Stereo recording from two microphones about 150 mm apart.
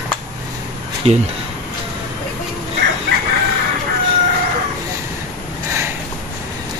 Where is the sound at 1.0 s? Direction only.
40° right (ahead or behind).